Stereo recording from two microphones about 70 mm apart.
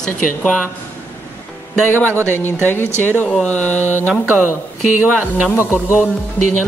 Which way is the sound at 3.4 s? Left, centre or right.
Centre.